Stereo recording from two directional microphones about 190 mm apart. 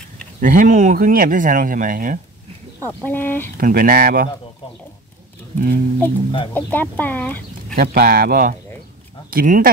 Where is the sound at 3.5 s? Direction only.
50° right (ahead or behind).